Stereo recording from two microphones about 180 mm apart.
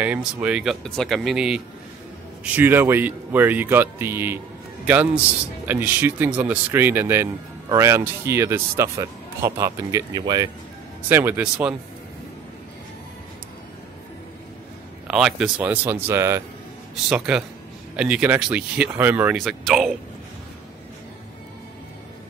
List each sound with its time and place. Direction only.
0.0 s speech: 5° right (ahead or behind)
11.1 s speech: 10° right (ahead or behind)
15.0 s a man's voice: 5° right (ahead or behind)
16.9 s speech: 5° right (ahead or behind)
19.3 s speech: centre (ahead or behind)